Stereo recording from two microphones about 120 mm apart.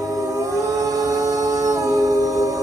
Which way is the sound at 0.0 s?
30° right (ahead or behind).